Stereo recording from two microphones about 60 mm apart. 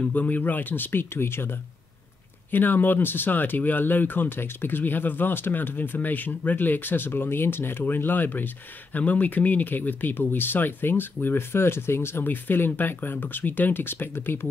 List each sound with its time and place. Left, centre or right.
0.0 s speech: left